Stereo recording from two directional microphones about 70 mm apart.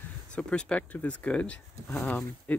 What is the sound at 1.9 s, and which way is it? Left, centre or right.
Speech, centre.